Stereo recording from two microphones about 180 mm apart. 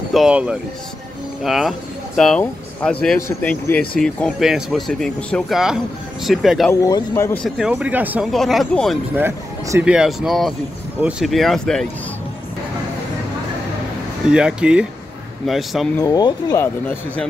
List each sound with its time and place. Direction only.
0.1 s speech: 5° right (ahead or behind)
6.7 s speech: 15° left (ahead or behind)
7.4 s speech: 5° right (ahead or behind)
9.1 s speech: 10° right (ahead or behind); by 11.9 s 5° left (ahead or behind)
14.3 s speech: 5° right (ahead or behind)
16.0 s speech: 20° left (ahead or behind)